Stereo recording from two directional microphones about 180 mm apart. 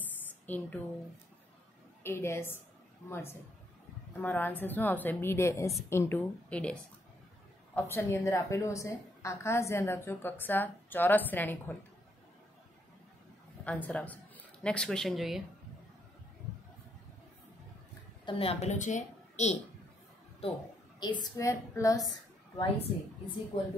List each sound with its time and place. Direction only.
0.5 s a woman's voice: 10° left (ahead or behind)
2.0 s a woman's voice: 15° left (ahead or behind)
13.7 s speech: 10° left (ahead or behind)
18.2 s a woman's voice: 35° left (ahead or behind)